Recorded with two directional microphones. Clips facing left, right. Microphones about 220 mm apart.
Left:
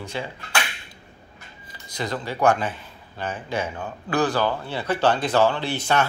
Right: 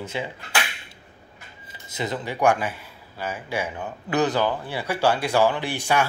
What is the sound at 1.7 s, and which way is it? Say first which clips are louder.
Speech: even; 20° right (ahead or behind).